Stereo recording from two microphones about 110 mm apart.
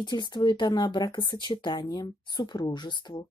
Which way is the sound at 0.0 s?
40° left (ahead or behind).